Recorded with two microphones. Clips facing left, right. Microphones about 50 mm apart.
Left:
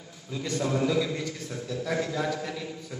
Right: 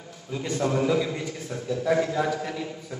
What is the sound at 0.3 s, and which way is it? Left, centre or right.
Speech, right.